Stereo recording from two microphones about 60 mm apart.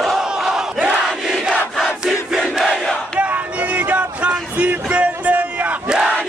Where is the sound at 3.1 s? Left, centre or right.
Right.